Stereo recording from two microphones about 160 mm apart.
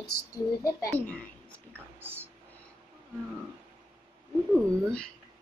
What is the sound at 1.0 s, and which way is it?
Speech, 10° left (ahead or behind).